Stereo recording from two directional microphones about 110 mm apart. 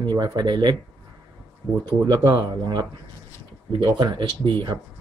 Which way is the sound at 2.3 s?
40° right (ahead or behind).